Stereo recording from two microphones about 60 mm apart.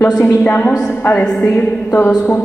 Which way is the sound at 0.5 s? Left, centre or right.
Left.